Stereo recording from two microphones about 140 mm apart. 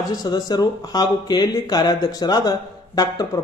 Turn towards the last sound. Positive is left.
turn(degrees=30)  # may be behind; listen again after turning